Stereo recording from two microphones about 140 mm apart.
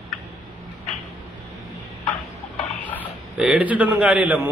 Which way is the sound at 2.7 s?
10° left (ahead or behind).